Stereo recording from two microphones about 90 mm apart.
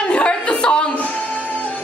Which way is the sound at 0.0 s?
10° left (ahead or behind).